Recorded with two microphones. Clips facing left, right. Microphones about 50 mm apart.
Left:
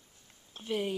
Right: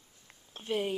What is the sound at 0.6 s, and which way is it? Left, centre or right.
Speech, centre.